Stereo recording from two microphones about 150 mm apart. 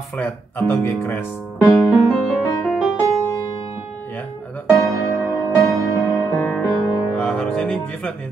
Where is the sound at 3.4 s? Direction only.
35° left (ahead or behind).